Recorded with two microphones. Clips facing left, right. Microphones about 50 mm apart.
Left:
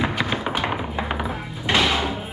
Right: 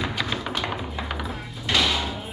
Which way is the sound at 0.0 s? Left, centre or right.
Left.